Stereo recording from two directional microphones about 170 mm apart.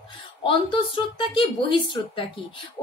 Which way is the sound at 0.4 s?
30° left (ahead or behind).